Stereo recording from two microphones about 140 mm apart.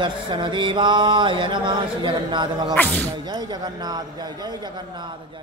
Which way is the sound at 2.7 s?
10° left (ahead or behind).